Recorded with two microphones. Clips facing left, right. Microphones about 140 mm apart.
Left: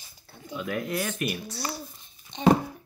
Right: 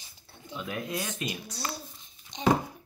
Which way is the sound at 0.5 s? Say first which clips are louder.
Left 4 dB; 20° right (ahead or behind).